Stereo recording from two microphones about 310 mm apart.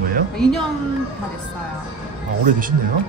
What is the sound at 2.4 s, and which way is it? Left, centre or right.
Speech, right.